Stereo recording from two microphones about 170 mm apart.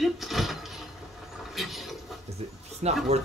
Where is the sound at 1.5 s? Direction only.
Centre (ahead or behind).